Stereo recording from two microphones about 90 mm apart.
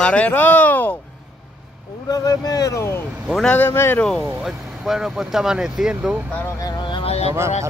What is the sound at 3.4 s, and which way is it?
Speech, 20° left (ahead or behind).